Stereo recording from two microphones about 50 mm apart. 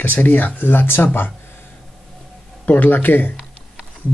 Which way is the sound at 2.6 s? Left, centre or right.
Left.